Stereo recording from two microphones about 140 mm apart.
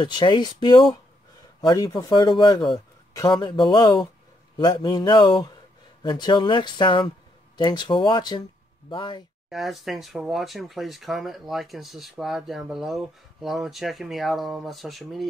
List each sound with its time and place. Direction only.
0.0 s speech: 35° left (ahead or behind)
9.5 s speech: centre (ahead or behind)